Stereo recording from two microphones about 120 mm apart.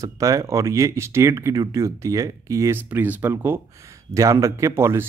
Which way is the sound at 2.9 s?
15° right (ahead or behind).